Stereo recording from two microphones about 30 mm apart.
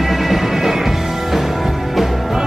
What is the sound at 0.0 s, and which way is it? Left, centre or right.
Music, centre.